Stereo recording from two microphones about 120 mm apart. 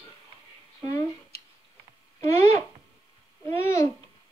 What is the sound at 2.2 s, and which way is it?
A woman's voice, 25° left (ahead or behind).